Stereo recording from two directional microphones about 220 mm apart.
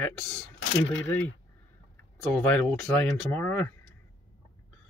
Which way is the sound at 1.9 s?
10° left (ahead or behind).